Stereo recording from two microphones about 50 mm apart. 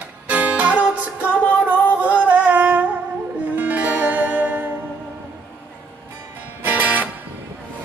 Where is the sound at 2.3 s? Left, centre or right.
Right.